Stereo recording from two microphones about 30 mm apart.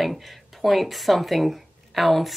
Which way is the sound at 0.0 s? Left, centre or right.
Centre.